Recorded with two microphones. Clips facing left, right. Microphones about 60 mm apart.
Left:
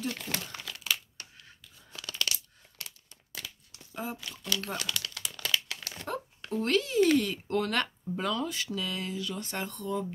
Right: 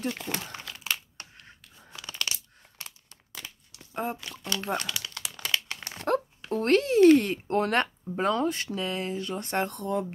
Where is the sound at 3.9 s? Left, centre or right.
Right.